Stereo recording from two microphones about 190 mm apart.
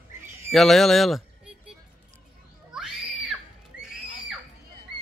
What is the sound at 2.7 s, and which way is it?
Screaming, 5° right (ahead or behind).